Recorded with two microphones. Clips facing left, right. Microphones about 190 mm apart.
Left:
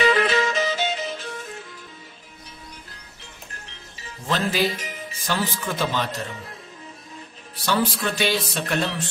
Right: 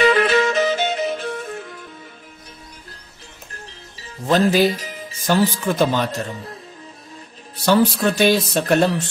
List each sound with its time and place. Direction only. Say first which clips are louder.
0.0 s music: right 4 dB; 55° right (ahead or behind)
4.3 s speech: right 8 dB; 40° right (ahead or behind)
7.6 s speech: right 7 dB; 45° right (ahead or behind)